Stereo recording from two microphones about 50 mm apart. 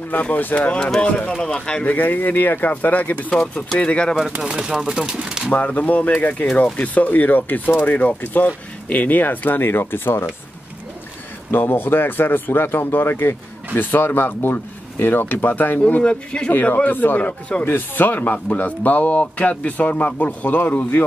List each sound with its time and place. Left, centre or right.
0.1 s speech: left; by 1.9 s centre
1.9 s speech: left
3.3 s speech: left
4.4 s speech: centre
5.5 s speech: left
11.5 s speech: left
16.0 s speech: centre
16.5 s speech: left
17.6 s speech: left